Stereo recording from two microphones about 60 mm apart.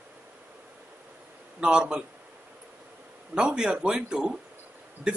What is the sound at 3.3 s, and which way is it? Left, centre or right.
Speech, centre.